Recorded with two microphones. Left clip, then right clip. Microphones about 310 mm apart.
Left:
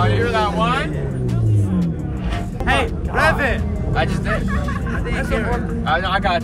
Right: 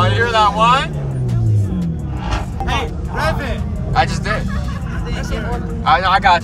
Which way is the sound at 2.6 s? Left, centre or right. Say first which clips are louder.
Left 5 dB; centre.